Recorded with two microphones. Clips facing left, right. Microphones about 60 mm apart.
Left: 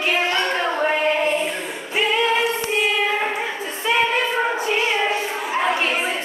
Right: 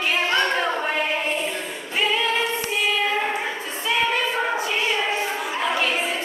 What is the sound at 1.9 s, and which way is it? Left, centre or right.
Singing, centre.